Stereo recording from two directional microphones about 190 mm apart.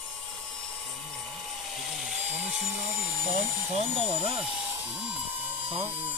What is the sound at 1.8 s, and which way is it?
Chainsaw, centre (ahead or behind).